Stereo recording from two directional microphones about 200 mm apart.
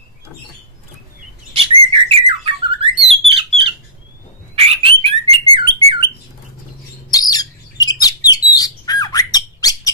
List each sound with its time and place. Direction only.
1.5 s bird: 30° right (ahead or behind)
7.1 s bird: 20° left (ahead or behind)